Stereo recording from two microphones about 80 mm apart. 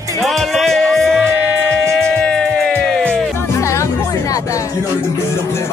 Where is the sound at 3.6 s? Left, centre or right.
Left.